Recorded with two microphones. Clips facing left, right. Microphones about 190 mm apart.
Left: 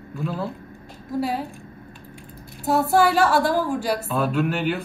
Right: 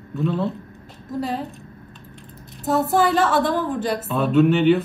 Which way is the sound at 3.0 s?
Centre (ahead or behind).